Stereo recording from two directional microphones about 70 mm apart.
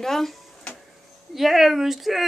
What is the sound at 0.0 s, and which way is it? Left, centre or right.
Speech, centre.